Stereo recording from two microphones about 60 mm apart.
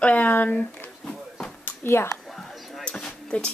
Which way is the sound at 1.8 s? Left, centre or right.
Left.